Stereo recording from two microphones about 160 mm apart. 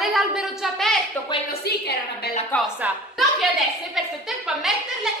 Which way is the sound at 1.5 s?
80° left.